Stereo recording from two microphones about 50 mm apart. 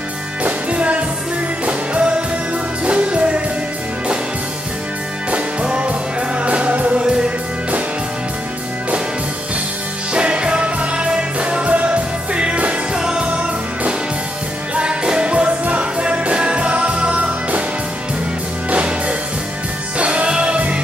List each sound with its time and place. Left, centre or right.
0.4 s music: right
5.3 s music: right
10.1 s music: right
18.7 s music: right